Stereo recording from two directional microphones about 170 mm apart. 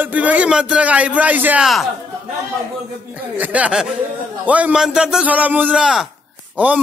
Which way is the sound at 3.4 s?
10° right (ahead or behind).